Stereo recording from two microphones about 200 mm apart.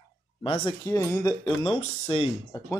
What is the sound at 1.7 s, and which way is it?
Speech, 30° left (ahead or behind).